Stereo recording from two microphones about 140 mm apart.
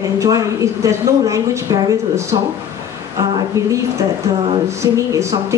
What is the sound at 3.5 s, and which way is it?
A woman's voice, 20° right (ahead or behind).